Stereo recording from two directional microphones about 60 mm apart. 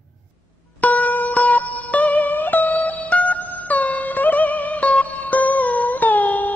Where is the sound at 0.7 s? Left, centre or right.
Left.